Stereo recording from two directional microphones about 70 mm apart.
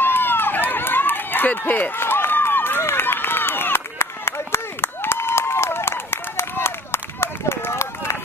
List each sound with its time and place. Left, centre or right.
0.0 s run: left